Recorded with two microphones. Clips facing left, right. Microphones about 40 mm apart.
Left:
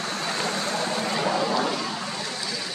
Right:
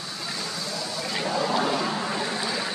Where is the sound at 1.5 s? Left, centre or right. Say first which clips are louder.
Right 1 dB; centre.